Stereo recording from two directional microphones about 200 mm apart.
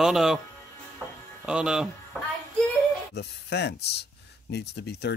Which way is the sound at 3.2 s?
55° left (ahead or behind).